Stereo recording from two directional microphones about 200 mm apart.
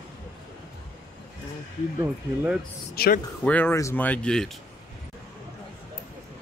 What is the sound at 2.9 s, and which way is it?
Speech, 50° left (ahead or behind).